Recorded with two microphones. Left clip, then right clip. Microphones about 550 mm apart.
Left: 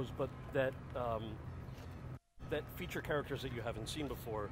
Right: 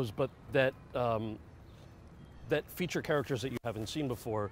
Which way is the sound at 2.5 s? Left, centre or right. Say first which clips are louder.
Right 8 dB; right.